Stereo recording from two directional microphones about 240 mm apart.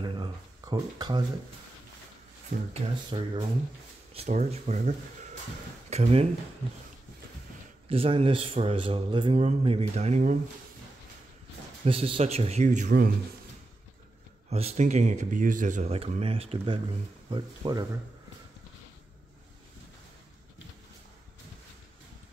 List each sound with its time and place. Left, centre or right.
0.0 s a sound: centre
2.7 s a man's voice: right
7.9 s a man's voice: right
11.8 s a man's voice: right
14.5 s a man's voice: right